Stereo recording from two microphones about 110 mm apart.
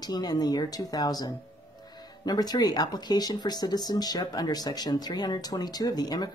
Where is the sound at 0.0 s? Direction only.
35° left (ahead or behind).